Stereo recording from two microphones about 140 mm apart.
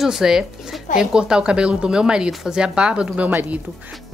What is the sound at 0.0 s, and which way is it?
A woman's voice, 5° right (ahead or behind).